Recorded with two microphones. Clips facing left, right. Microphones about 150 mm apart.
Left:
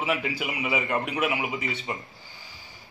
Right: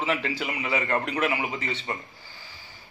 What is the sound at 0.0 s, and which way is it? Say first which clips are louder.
A man's voice: even; 10° left (ahead or behind).